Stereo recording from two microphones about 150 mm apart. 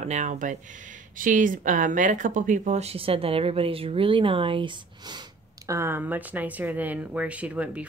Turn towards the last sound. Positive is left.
turn(degrees=-10)  # may be behind; listen again after turning